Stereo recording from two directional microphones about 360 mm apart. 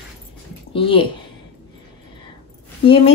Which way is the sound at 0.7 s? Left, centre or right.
Centre.